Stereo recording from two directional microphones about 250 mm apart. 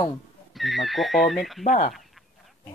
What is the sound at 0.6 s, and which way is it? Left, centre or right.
Speech, centre.